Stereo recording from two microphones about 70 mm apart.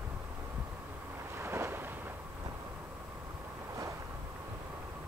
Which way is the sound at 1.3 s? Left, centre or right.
Right.